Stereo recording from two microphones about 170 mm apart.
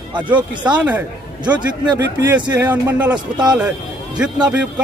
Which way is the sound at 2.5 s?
10° right (ahead or behind).